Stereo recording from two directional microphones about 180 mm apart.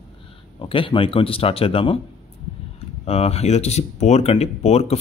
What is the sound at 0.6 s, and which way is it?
Speech, 30° left (ahead or behind).